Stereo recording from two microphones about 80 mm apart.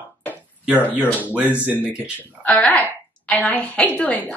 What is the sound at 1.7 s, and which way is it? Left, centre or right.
Speech, centre.